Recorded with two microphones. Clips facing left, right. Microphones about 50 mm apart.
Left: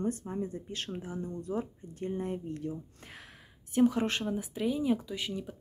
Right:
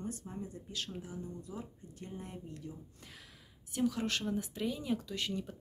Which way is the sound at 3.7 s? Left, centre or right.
Left.